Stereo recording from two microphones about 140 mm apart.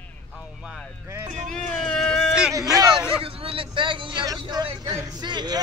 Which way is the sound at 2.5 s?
25° right (ahead or behind).